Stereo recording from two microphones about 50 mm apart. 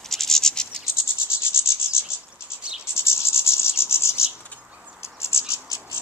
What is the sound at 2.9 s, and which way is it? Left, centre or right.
Cricket, left.